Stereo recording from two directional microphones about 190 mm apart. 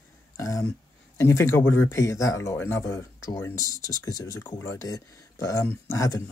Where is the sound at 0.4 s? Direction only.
15° left (ahead or behind).